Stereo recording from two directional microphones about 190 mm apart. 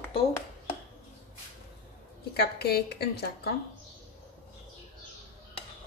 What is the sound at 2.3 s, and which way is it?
Speech, 55° left (ahead or behind).